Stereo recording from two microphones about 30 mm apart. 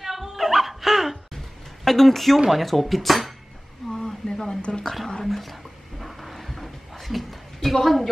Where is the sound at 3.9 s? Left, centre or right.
Left.